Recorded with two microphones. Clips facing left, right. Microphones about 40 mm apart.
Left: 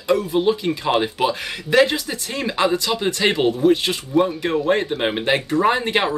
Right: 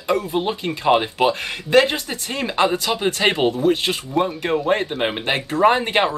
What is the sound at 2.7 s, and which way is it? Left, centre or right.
Speech, right.